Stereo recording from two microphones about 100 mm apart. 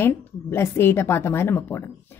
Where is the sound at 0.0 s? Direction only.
25° left (ahead or behind).